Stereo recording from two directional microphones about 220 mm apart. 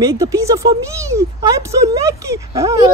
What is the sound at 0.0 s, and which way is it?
Speech, 15° right (ahead or behind).